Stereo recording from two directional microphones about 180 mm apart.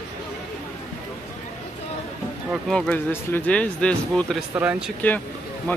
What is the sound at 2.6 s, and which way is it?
Speech, 5° left (ahead or behind).